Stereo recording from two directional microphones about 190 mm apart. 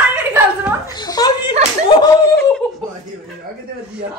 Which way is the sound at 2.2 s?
10° left (ahead or behind).